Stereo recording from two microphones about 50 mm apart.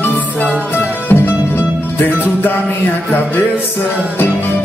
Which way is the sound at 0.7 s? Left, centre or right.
Left.